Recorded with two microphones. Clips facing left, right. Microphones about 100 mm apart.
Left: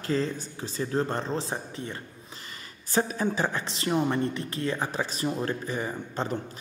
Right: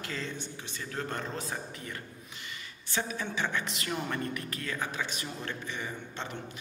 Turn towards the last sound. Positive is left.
turn(degrees=40)  # may be behind; listen again after turning